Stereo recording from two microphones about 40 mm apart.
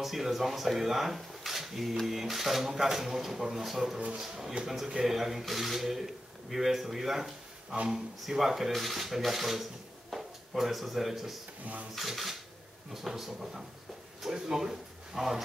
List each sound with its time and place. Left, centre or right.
0.0 s speech: centre
11.6 s speech: right
11.9 s speech: centre